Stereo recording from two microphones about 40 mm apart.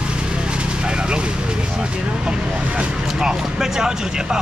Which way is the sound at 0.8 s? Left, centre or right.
Right.